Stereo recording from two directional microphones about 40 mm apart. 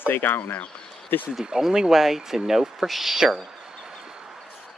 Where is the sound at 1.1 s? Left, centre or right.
Left.